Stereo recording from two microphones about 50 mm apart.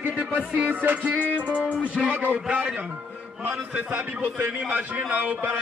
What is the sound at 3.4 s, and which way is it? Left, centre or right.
A man's voice, right.